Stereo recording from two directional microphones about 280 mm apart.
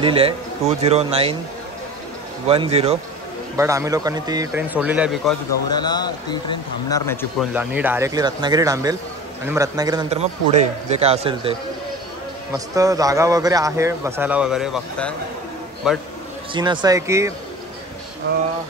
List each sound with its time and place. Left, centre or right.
0.0 s a man's voice: centre
2.4 s a man's voice: right
3.5 s a man's voice: centre
5.7 s a man's voice: centre
7.5 s a man's voice: centre
12.5 s a man's voice: centre
16.5 s a man's voice: centre